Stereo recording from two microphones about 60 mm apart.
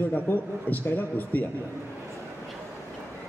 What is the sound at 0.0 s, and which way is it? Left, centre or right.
A man's voice, left.